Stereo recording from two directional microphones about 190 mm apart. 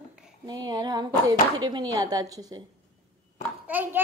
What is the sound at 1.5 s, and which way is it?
A woman's voice, 20° right (ahead or behind).